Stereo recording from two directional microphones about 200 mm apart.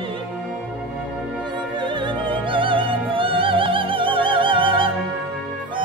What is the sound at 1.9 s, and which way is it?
Opera, 25° right (ahead or behind).